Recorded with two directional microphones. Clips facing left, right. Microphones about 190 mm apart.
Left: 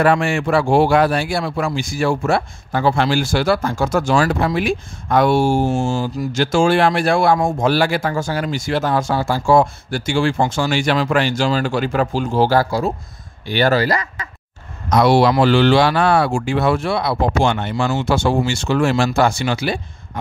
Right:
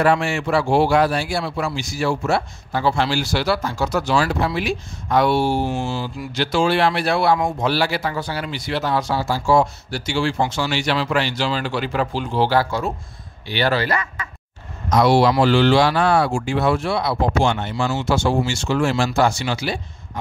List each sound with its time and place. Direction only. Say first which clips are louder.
0.0 s speech: left 2 dB; 55° left (ahead or behind); by 14.0 s 40° left (ahead or behind)
14.9 s speech: left 2 dB; 60° left (ahead or behind)